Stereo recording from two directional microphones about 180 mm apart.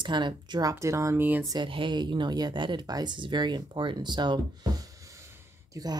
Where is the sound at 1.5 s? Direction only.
25° right (ahead or behind).